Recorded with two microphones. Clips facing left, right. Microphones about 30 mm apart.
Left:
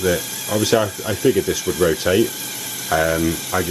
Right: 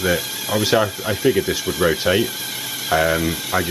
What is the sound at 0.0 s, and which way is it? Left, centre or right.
Speech, centre.